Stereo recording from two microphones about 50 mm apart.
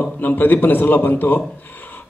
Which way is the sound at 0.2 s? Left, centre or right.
Left.